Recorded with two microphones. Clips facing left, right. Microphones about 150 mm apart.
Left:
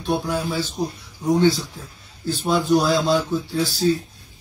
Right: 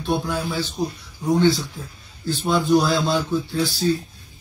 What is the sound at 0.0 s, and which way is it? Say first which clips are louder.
Speech: left 1 dB; centre (ahead or behind).